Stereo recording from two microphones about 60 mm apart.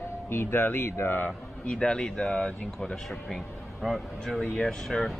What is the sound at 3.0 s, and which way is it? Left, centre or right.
Speech, centre.